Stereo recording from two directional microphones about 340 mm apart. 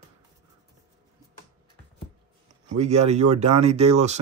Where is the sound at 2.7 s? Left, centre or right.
Centre.